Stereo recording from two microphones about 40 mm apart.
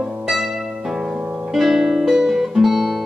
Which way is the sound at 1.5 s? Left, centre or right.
Centre.